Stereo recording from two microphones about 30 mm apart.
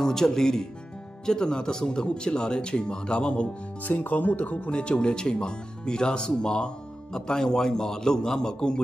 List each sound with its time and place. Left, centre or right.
0.0 s speech: centre; by 3.4 s left
3.8 s speech: left
4.7 s speech: left